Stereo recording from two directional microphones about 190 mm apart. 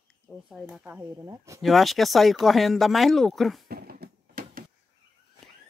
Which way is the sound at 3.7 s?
55° right (ahead or behind).